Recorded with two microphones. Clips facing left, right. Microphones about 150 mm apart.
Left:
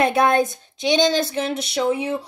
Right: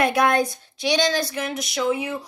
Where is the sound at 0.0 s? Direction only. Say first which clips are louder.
Left 2 dB; 25° left (ahead or behind).